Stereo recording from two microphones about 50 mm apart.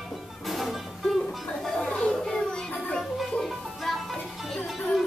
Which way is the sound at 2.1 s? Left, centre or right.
Centre.